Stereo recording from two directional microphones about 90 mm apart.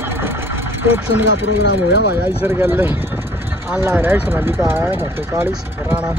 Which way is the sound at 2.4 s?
25° right (ahead or behind).